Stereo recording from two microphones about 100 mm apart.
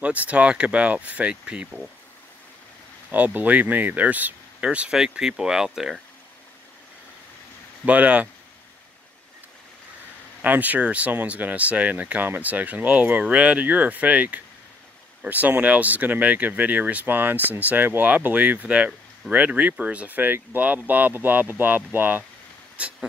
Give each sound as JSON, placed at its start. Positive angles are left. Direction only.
{"t": 0.0, "sound": "speech", "side_deg": -15}
{"t": 3.3, "sound": "speech", "side_deg": -15}
{"t": 7.8, "sound": "speech", "side_deg": -15}
{"t": 10.4, "sound": "speech", "side_deg": -15}